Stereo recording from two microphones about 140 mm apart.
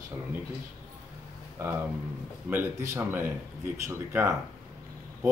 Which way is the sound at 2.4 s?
15° right (ahead or behind).